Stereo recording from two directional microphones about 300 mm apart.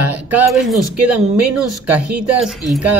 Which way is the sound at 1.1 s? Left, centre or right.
Right.